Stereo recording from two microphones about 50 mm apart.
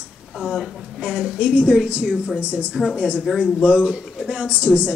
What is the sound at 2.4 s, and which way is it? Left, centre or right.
Speech, right.